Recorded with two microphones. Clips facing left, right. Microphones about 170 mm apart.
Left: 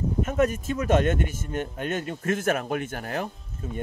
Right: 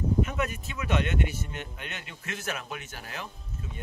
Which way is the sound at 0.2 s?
45° left (ahead or behind).